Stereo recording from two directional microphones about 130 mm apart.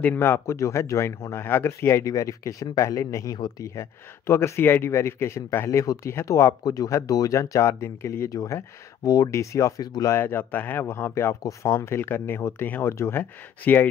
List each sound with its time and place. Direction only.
0.0 s speech: 15° left (ahead or behind)
3.3 s speech: 35° left (ahead or behind)
3.6 s speech: 20° left (ahead or behind)